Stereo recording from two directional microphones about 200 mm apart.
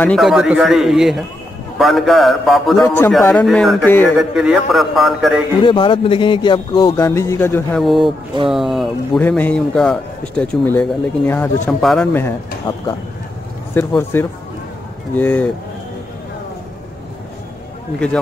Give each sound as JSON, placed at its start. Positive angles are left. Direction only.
{"t": 0.0, "sound": "a man's voice", "side_deg": 0}
{"t": 4.2, "sound": "speech", "side_deg": 0}
{"t": 5.6, "sound": "speech", "side_deg": 25}
{"t": 7.8, "sound": "speech", "side_deg": 0}
{"t": 12.7, "sound": "speech", "side_deg": 25}
{"t": 13.7, "sound": "a man's voice", "side_deg": 10}